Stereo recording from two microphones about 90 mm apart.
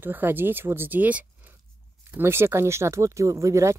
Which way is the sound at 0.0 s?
25° right (ahead or behind).